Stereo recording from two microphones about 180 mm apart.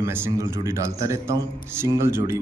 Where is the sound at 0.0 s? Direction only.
15° right (ahead or behind).